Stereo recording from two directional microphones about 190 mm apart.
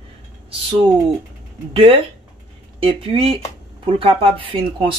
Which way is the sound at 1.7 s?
30° right (ahead or behind).